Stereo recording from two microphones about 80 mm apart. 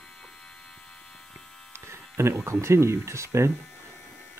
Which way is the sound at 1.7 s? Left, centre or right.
Right.